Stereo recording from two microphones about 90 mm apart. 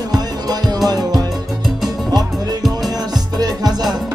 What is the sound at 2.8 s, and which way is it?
Music, 45° right (ahead or behind).